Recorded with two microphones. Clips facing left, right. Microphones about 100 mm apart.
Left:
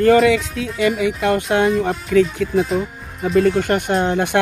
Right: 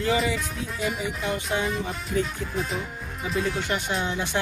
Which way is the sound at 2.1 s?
90° left.